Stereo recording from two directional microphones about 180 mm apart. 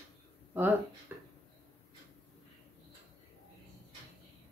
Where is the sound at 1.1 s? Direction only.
10° right (ahead or behind).